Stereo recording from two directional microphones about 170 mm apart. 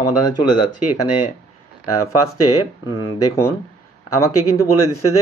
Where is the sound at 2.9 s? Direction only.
25° left (ahead or behind).